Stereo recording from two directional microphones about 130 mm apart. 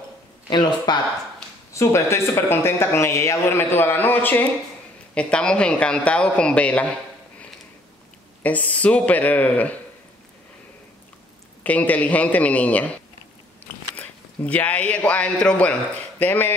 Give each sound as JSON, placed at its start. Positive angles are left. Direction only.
{"t": 0.5, "sound": "speech", "side_deg": 35}
{"t": 1.7, "sound": "a man's voice", "side_deg": 20}
{"t": 8.4, "sound": "a man's voice", "side_deg": 10}
{"t": 11.6, "sound": "a man's voice", "side_deg": 10}